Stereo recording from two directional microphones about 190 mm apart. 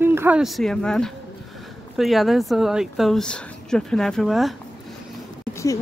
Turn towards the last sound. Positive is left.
turn(degrees=15)  # may be behind; listen again after turning